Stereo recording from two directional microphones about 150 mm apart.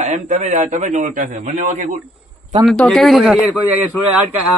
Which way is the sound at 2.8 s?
Centre (ahead or behind).